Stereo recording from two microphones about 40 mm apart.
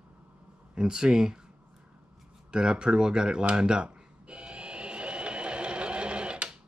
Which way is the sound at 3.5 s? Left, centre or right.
Right.